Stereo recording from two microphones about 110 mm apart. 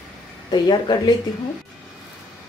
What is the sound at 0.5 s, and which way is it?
Speech, 40° left (ahead or behind).